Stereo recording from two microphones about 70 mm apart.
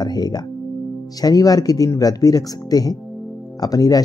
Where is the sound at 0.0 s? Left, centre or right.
Left.